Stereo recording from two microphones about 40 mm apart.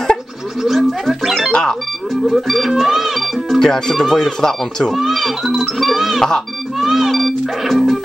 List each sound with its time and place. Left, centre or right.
0.6 s a sound: centre
1.5 s music: centre
2.2 s a child's voice: centre
3.4 s speech: centre
4.9 s a child's voice: centre
6.8 s music: centre